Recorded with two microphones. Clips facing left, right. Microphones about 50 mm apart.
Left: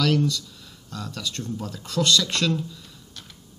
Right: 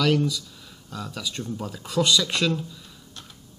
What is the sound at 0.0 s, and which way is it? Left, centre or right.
Speech, centre.